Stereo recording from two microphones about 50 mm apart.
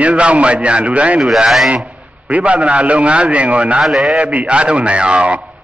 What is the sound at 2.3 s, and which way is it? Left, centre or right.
A man's voice, right.